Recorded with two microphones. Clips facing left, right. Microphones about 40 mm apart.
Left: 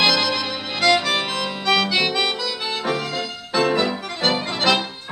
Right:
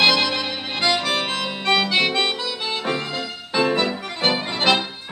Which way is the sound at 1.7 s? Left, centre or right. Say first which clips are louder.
Even; centre.